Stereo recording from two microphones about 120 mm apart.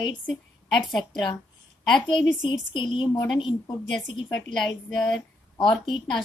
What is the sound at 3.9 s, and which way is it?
A woman's voice, 5° left (ahead or behind).